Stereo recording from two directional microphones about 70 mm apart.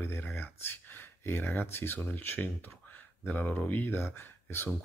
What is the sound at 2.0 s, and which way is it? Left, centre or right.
Speech, left.